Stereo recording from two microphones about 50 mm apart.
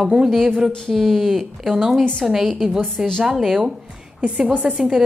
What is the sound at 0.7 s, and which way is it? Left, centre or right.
A woman's voice, centre.